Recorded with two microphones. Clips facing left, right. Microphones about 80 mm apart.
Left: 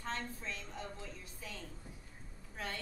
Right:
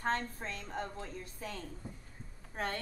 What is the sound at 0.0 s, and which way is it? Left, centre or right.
A woman's voice, right.